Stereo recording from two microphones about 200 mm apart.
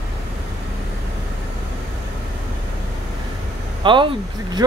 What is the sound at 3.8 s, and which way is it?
Speech, 25° right (ahead or behind).